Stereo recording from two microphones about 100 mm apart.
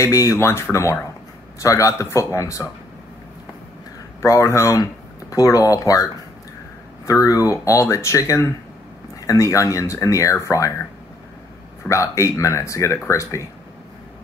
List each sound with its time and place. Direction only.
0.0 s speech: 30° left (ahead or behind)
4.2 s speech: 30° left (ahead or behind)
7.1 s speech: 35° left (ahead or behind)